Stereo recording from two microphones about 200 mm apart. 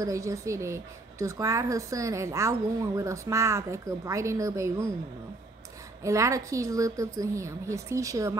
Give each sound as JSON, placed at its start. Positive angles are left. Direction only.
{"t": 0.0, "sound": "a woman's voice", "side_deg": -15}
{"t": 6.0, "sound": "a woman's voice", "side_deg": -15}